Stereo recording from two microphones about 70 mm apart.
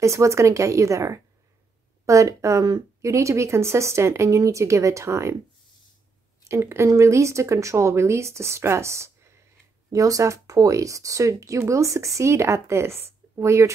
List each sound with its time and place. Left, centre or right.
0.0 s speech: right
6.5 s speech: right
9.9 s speech: right